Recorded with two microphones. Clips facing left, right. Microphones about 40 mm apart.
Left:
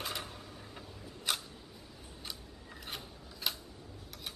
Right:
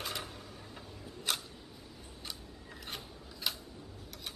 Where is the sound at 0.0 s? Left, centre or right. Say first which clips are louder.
Even; centre.